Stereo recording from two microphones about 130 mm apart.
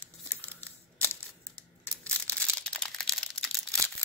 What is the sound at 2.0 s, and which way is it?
Crumpling, 10° left (ahead or behind).